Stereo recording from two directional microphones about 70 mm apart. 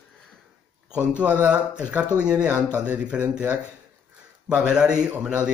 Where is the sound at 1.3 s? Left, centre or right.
Centre.